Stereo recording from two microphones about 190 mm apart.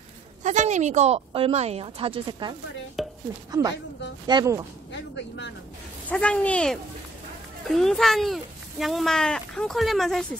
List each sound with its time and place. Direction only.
0.4 s a woman's voice: 40° right (ahead or behind)
3.0 s chopping: centre (ahead or behind)
4.3 s speech: 20° right (ahead or behind)
4.9 s speech: 65° left (ahead or behind)
6.0 s speech: 5° left (ahead or behind)